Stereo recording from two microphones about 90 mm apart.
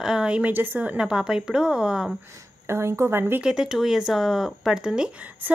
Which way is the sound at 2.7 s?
30° right (ahead or behind).